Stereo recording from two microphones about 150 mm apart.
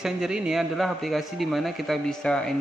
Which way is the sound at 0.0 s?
5° right (ahead or behind).